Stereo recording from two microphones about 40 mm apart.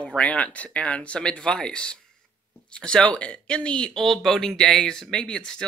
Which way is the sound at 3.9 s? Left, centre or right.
Centre.